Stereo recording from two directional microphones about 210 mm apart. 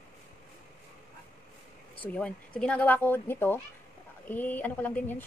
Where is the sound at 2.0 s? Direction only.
5° left (ahead or behind).